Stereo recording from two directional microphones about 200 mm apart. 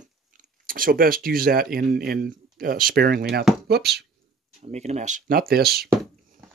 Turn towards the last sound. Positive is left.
turn(degrees=-50)  # may be behind; listen again after turning